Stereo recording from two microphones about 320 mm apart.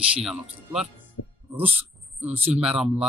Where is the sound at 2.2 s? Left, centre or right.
Centre.